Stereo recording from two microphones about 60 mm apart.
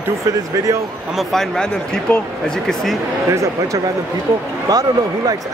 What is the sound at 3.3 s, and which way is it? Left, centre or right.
Speech, right.